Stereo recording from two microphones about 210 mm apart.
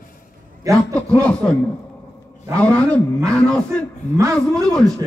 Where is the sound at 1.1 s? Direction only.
5° left (ahead or behind).